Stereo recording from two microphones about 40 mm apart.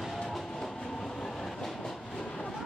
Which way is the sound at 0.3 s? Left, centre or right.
Centre.